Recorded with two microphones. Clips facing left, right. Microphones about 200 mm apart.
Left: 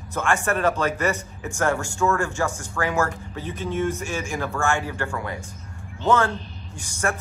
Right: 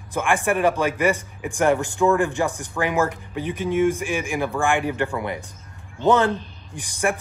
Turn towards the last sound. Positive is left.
turn(degrees=-15)  # may be behind; listen again after turning